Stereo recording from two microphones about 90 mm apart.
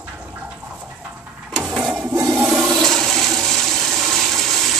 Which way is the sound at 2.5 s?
Centre (ahead or behind).